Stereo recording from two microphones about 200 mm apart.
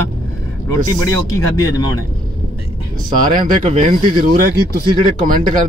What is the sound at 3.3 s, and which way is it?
Speech, 35° right (ahead or behind).